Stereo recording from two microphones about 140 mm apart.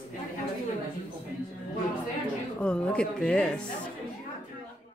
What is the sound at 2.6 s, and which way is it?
Speech, 10° left (ahead or behind).